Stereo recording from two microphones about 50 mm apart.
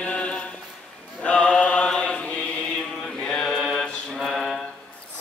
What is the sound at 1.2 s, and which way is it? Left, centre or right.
Mantra, left.